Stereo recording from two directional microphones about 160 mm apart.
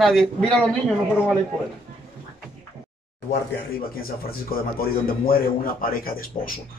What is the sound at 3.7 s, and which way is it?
A man's voice, 70° left (ahead or behind).